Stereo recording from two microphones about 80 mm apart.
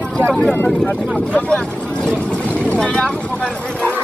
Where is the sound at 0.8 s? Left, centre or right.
Centre.